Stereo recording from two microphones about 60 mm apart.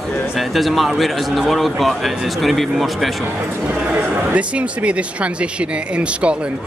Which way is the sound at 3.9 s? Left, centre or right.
Right.